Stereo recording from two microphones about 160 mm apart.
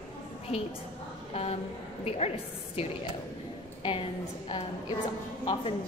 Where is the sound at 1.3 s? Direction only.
40° left (ahead or behind).